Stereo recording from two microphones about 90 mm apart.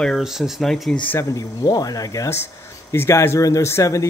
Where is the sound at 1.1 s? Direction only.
40° left (ahead or behind).